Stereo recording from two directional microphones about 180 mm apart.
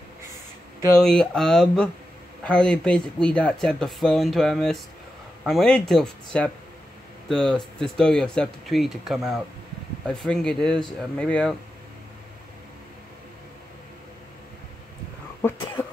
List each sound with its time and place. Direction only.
1.0 s speech: 5° left (ahead or behind)